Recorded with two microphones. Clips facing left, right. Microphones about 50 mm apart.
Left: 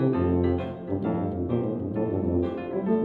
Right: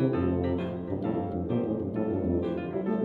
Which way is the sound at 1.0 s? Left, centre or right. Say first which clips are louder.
Left 3 dB; centre.